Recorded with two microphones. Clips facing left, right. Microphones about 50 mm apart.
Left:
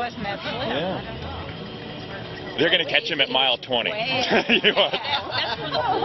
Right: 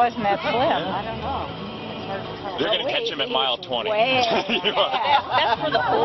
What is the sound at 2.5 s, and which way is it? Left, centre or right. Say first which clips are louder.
A man's voice: left 3 dB; left.